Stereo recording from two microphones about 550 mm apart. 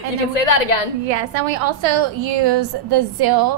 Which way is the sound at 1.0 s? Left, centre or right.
Right.